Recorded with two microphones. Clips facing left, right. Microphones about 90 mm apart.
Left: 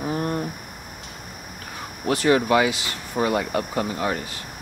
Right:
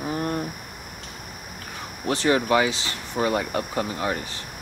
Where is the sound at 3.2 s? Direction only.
30° left (ahead or behind).